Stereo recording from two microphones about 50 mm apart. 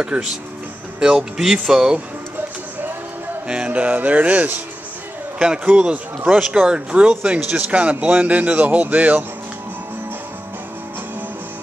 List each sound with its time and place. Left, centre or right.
0.0 s speech: centre
3.4 s music: right
5.4 s speech: centre
6.7 s music: centre
7.5 s speech: right